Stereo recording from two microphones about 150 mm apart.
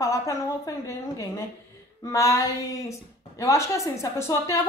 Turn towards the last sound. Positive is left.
turn(degrees=20)  # may be behind; listen again after turning